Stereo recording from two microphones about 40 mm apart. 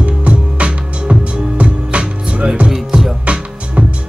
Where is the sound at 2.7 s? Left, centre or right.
Centre.